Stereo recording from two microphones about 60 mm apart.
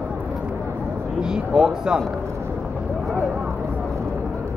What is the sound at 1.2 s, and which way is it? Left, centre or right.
Speech, centre.